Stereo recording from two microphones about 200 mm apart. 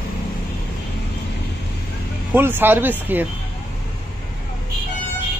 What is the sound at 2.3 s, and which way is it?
Speech, 10° right (ahead or behind).